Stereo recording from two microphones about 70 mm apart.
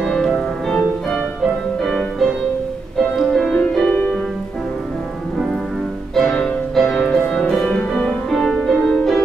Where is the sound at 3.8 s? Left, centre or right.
Left.